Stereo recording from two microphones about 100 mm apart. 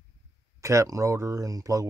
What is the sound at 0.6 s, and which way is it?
Speech, 30° right (ahead or behind).